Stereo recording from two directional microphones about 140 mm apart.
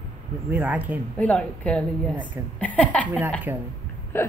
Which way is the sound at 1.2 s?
10° left (ahead or behind).